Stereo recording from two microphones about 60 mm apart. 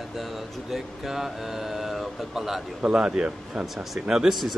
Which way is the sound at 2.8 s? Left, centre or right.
Centre.